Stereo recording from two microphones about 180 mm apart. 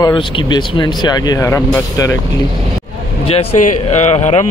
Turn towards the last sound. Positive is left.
turn(degrees=40)  # may be behind; listen again after turning